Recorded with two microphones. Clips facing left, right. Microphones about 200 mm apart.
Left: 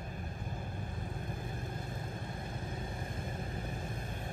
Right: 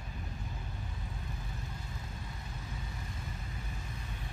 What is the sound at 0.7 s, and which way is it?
Vehicle, 50° left (ahead or behind).